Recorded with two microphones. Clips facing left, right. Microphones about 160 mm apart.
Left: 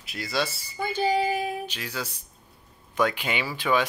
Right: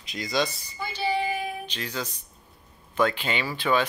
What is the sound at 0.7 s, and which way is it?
Child singing, 45° left (ahead or behind).